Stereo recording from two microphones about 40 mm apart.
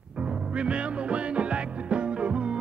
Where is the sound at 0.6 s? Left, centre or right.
Right.